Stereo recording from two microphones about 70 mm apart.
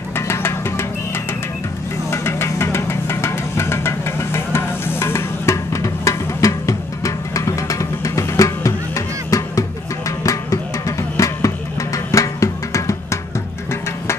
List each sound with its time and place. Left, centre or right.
0.1 s music: left